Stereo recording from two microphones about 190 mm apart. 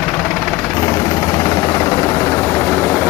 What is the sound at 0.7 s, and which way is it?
Vehicle, 20° left (ahead or behind).